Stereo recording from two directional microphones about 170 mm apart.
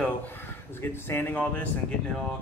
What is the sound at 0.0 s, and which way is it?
Speech, 10° left (ahead or behind).